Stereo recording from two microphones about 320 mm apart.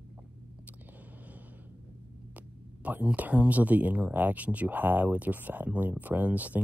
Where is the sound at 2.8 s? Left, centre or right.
Centre.